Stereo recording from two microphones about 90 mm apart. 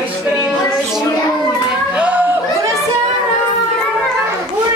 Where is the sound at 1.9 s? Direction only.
20° right (ahead or behind).